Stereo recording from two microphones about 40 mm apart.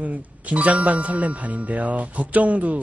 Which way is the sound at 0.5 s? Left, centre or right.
Right.